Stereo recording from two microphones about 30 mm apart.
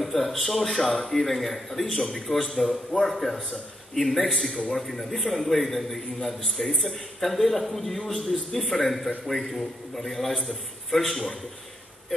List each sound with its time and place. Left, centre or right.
0.0 s a man's voice: centre
4.3 s a man's voice: centre
4.6 s a man's voice: left
4.8 s a man's voice: centre